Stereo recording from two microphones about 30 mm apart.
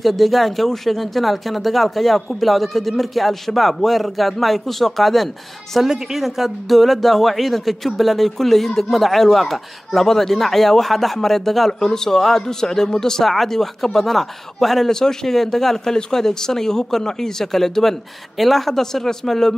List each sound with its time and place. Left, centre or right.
0.0 s speech: centre
5.9 s a woman's voice: centre
6.1 s speech: centre
14.9 s speech: centre